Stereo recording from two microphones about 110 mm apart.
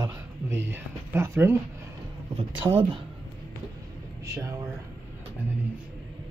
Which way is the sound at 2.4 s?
50° right (ahead or behind).